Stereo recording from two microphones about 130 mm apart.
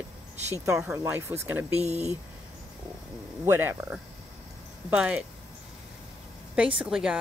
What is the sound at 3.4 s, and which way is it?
Speech, 15° right (ahead or behind).